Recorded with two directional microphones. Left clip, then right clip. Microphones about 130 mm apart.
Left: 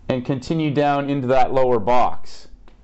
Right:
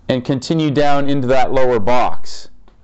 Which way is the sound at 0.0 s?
35° right (ahead or behind).